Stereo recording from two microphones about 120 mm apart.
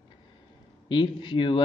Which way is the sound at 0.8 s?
40° left (ahead or behind).